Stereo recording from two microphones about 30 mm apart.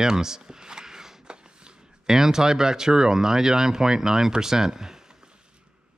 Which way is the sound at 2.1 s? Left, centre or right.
Centre.